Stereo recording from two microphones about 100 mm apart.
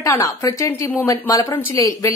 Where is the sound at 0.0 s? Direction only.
30° left (ahead or behind).